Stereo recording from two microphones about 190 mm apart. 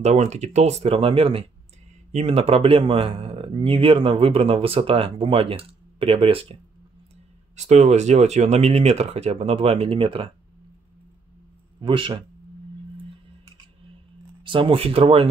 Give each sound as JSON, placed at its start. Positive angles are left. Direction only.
{"t": 0.0, "sound": "speech", "side_deg": -35}
{"t": 11.8, "sound": "speech", "side_deg": -25}
{"t": 14.4, "sound": "speech", "side_deg": -25}